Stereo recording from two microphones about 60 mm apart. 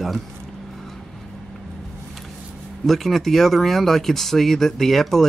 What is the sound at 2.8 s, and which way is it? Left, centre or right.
Speech, centre.